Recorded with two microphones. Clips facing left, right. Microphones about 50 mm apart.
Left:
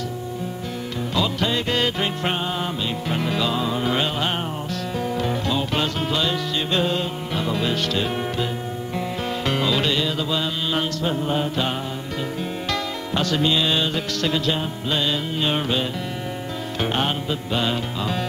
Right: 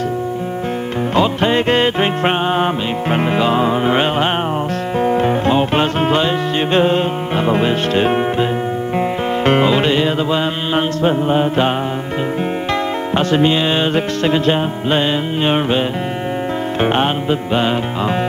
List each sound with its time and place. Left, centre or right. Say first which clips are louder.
1.1 s music: right 8 dB; right
13.1 s music: right 6 dB; right
16.8 s music: right 7 dB; right